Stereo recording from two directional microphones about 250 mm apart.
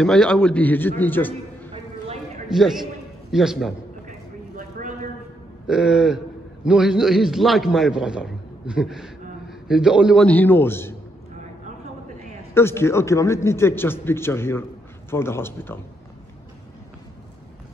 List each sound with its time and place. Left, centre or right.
0.0 s a man's voice: centre
2.5 s a man's voice: centre
4.6 s a sound: right
5.7 s a man's voice: centre
12.5 s a man's voice: centre